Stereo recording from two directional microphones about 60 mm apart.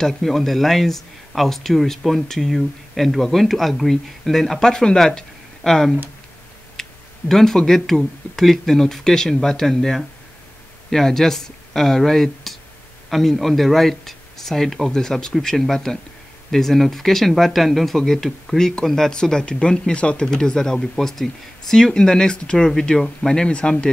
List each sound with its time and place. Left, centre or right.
0.0 s speech: centre